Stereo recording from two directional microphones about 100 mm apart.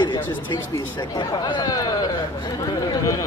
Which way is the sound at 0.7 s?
30° left (ahead or behind).